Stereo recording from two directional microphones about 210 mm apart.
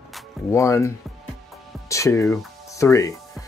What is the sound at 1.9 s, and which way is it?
Speech, 15° left (ahead or behind).